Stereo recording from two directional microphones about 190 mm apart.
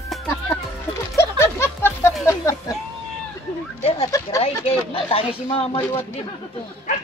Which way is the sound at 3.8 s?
30° left (ahead or behind).